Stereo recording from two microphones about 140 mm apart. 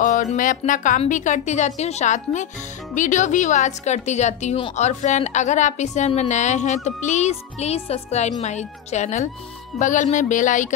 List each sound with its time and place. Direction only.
0.0 s a woman's voice: 65° left (ahead or behind)